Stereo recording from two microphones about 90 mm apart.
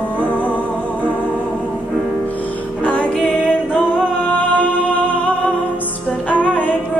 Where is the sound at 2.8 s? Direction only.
15° left (ahead or behind).